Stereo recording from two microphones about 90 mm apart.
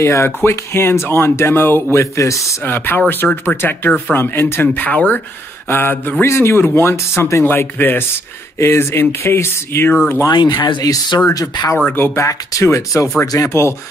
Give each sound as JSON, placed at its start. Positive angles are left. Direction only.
{"t": 0.0, "sound": "speech", "side_deg": 30}
{"t": 2.6, "sound": "speech", "side_deg": 20}
{"t": 10.3, "sound": "speech", "side_deg": 55}
{"t": 10.8, "sound": "speech", "side_deg": 40}
{"t": 11.8, "sound": "speech", "side_deg": 25}
{"t": 12.3, "sound": "speech", "side_deg": 35}